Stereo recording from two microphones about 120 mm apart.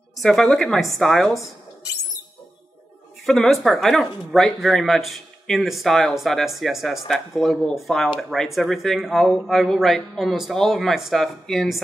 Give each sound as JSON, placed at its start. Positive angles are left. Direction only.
{"t": 0.2, "sound": "speech", "side_deg": 0}
{"t": 3.3, "sound": "speech", "side_deg": 0}